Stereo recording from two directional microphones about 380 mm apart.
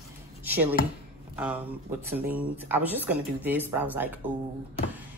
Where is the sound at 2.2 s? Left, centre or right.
Centre.